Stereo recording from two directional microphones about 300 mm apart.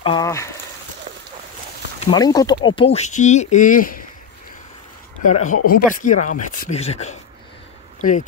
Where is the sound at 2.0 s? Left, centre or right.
Centre.